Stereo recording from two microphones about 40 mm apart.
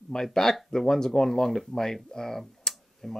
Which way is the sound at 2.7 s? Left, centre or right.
Centre.